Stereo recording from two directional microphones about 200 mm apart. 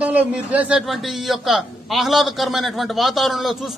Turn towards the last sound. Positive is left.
turn(degrees=0)  # may be behind; listen again after turning